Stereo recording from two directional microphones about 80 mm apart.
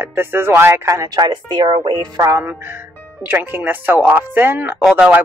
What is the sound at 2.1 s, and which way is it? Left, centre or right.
Music, right.